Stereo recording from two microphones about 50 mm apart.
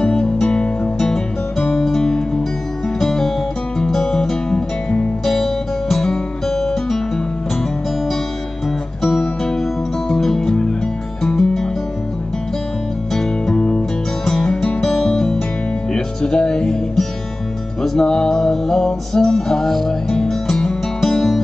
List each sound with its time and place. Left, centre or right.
0.0 s music: centre
9.0 s music: centre
13.1 s music: centre
13.6 s music: centre